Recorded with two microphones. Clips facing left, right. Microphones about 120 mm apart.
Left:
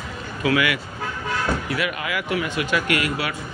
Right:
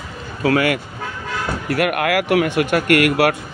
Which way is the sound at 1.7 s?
60° right (ahead or behind).